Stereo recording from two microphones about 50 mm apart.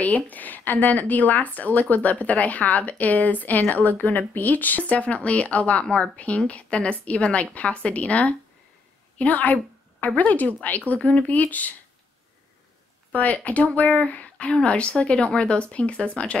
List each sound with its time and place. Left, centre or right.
0.0 s speech: left
13.1 s speech: left